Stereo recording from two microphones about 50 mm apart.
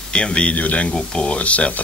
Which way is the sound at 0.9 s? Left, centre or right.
Centre.